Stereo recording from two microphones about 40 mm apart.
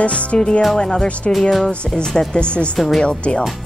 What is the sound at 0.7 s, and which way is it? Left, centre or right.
Speech, left.